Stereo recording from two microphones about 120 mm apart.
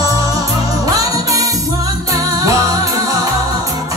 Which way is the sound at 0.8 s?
30° right (ahead or behind).